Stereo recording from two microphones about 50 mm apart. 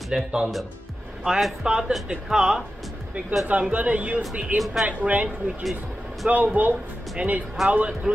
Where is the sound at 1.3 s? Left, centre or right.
Centre.